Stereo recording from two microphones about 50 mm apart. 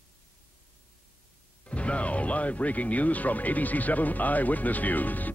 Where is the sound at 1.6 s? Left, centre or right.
Left.